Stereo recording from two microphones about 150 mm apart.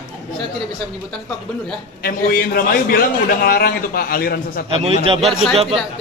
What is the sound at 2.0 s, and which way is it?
A man's voice, 85° left.